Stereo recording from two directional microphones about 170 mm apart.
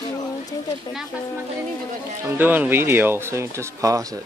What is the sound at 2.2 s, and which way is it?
Speech, 10° right (ahead or behind).